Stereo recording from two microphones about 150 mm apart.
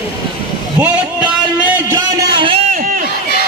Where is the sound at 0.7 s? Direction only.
10° right (ahead or behind).